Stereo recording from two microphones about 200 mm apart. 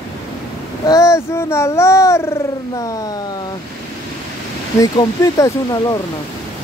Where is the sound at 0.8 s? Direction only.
15° left (ahead or behind).